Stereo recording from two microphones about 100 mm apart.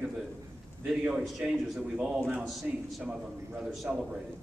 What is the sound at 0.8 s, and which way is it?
A man's voice, 5° right (ahead or behind).